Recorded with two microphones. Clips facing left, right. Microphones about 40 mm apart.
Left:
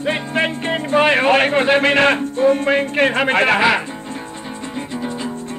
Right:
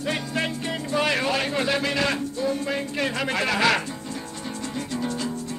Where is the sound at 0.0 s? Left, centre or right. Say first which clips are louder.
Left 7 dB; left.